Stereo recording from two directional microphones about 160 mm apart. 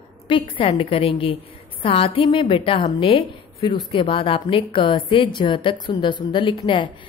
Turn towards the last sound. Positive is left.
turn(degrees=30)  # may be behind; listen again after turning